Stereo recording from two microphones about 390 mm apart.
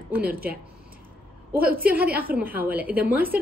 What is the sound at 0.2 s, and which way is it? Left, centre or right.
Speech, right.